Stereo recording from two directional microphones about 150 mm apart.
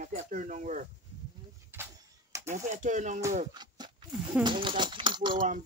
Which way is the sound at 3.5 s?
30° right (ahead or behind).